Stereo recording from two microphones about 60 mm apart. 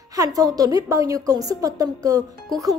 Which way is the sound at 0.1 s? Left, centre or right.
Right.